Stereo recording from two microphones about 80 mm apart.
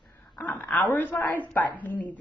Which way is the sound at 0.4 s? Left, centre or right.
Left.